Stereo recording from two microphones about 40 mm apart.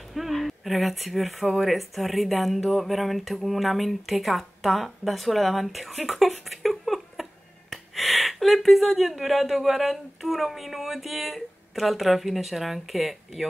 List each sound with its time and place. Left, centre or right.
0.1 s speech: centre